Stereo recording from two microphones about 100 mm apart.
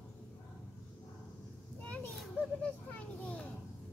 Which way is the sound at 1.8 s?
15° left (ahead or behind).